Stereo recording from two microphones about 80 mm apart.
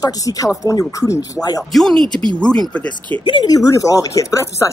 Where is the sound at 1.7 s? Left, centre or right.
Centre.